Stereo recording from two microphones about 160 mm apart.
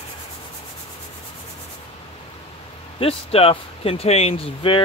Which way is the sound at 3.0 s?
35° left (ahead or behind).